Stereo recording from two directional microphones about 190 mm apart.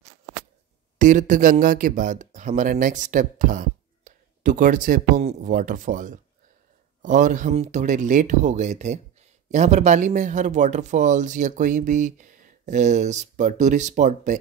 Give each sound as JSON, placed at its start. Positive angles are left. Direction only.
{"t": 0.9, "sound": "speech", "side_deg": -40}